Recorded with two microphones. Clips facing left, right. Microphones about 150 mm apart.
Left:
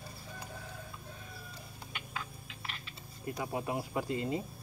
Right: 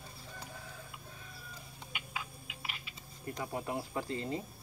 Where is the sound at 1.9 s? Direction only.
10° right (ahead or behind).